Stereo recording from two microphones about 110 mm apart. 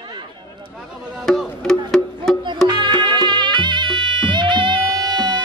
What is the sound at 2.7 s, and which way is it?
Music, 45° right (ahead or behind).